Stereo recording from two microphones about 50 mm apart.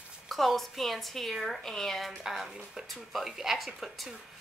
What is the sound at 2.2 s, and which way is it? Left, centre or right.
Speech, centre.